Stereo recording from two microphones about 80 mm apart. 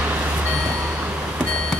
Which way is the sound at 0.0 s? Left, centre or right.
Right.